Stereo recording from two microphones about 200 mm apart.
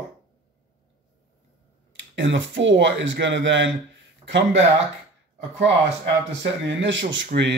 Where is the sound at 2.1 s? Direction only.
70° right (ahead or behind).